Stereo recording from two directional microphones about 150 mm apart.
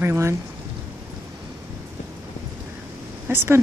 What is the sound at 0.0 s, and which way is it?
Speech, 15° right (ahead or behind).